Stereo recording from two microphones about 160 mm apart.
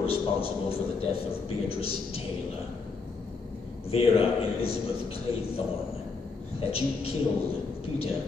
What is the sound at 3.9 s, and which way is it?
A man's voice, 35° left (ahead or behind).